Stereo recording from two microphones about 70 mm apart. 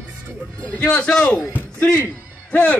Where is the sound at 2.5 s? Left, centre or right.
Left.